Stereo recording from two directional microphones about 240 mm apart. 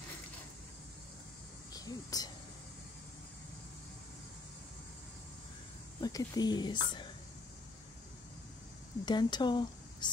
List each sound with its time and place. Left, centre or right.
1.7 s speech: centre
5.9 s speech: centre
9.0 s speech: centre